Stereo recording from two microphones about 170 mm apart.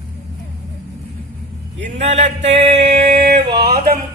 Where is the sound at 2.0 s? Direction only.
40° right (ahead or behind).